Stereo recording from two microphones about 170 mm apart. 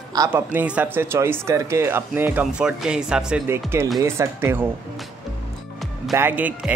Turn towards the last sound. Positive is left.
turn(degrees=-10)  # may be behind; listen again after turning